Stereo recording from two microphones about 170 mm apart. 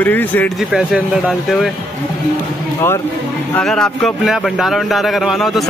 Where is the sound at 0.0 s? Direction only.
10° left (ahead or behind).